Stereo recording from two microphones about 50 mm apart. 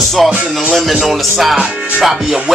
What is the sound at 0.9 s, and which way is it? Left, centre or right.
Music, centre.